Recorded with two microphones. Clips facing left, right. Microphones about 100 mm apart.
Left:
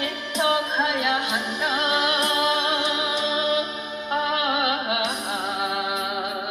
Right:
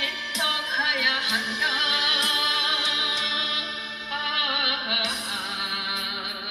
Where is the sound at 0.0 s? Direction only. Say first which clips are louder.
Left 6 dB; 45° left (ahead or behind).